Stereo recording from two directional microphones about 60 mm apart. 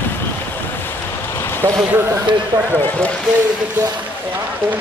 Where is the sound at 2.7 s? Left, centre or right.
Left.